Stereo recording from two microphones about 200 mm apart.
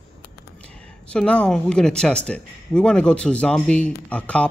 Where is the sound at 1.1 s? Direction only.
5° left (ahead or behind).